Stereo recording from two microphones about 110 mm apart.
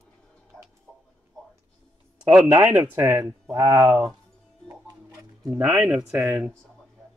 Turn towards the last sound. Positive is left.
turn(degrees=-15)  # may be behind; listen again after turning